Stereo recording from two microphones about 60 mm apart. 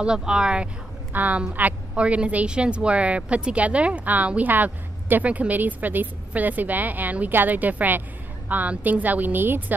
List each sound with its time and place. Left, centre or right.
0.0 s speech: centre
1.1 s a woman's voice: right